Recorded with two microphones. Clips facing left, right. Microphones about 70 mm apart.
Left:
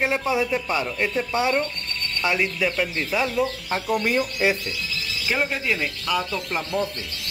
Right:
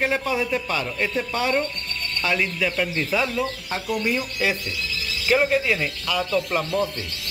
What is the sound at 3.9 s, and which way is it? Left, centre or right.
Speech, left.